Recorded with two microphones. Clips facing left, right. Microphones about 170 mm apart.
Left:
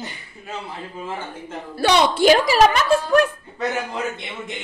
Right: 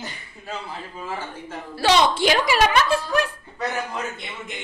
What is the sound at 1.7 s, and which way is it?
A woman's voice, 60° left (ahead or behind).